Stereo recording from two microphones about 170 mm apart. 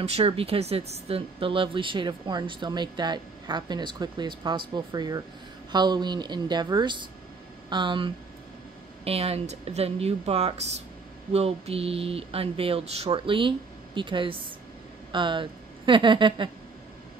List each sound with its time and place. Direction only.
0.0 s speech: 35° right (ahead or behind)